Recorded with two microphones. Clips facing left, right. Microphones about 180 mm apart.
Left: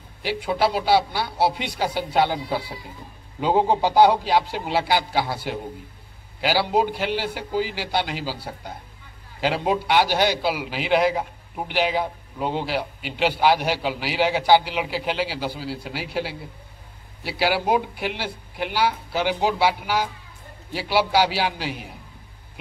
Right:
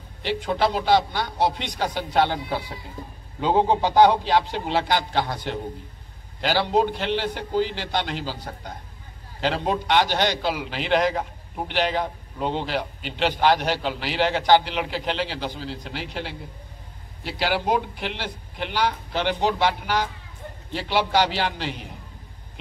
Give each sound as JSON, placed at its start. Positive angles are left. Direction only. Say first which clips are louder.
{"t": 0.2, "sound": "a man's voice", "louder": "left 1 dB", "side_deg": 10}